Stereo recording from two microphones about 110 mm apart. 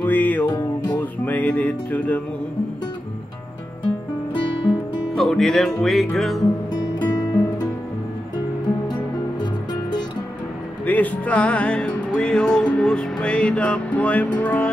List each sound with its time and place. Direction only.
0.0 s music: 15° left (ahead or behind)
4.3 s music: 50° left (ahead or behind)
5.1 s music: 5° left (ahead or behind)
9.4 s music: 40° left (ahead or behind)
10.9 s music: 15° left (ahead or behind)